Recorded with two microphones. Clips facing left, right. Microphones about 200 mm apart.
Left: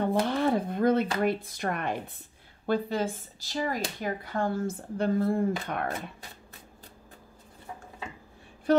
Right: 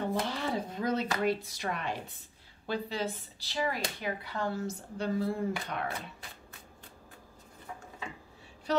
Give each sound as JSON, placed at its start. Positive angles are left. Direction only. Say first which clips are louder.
{"t": 0.1, "sound": "a sound", "louder": "left 7 dB", "side_deg": 55}
{"t": 1.2, "sound": "speech", "louder": "left 3 dB", "side_deg": 55}
{"t": 8.7, "sound": "speech", "louder": "left 6 dB", "side_deg": 55}